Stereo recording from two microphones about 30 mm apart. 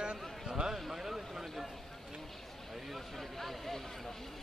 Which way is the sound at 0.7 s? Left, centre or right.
Centre.